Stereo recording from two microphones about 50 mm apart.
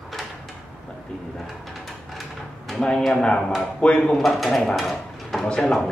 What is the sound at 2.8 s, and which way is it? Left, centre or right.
Speech, centre.